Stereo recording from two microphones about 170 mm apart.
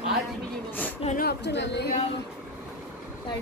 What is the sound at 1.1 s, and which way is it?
Speech, 75° left (ahead or behind).